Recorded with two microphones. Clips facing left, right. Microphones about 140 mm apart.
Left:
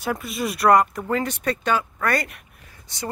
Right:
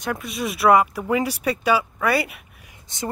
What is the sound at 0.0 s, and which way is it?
Speech, centre (ahead or behind).